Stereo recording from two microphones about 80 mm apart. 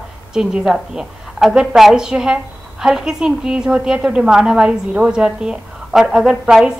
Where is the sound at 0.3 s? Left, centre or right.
Centre.